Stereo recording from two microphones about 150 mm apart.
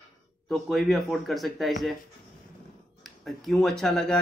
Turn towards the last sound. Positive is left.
turn(degrees=5)  # may be behind; listen again after turning